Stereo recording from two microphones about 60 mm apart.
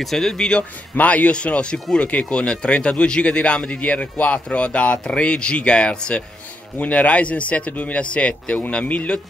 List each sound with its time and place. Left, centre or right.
0.0 s speech: centre
0.9 s speech: left